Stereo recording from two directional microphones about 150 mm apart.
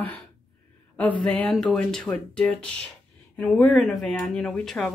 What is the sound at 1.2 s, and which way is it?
Speech, 10° left (ahead or behind).